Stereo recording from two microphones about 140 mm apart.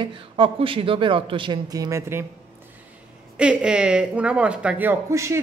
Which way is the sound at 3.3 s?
5° right (ahead or behind).